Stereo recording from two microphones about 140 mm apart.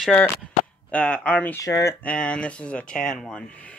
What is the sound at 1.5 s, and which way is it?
Speech, 20° left (ahead or behind).